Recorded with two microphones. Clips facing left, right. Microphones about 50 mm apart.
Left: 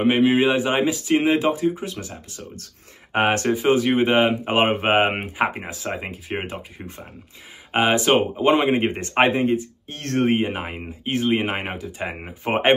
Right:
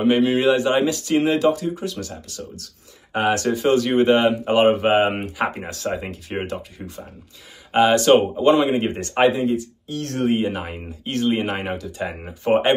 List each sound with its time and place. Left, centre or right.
0.0 s speech: left
2.5 s speech: left
3.5 s speech: centre; by 5.2 s left
5.2 s speech: centre
7.7 s speech: left
8.5 s speech: left